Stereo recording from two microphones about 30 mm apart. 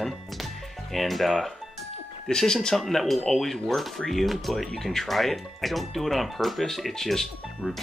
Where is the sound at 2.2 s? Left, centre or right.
Centre.